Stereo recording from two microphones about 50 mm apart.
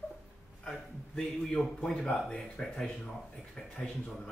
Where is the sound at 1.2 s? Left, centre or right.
Centre.